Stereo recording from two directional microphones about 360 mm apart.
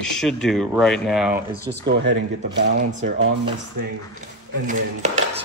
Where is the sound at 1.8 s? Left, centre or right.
Right.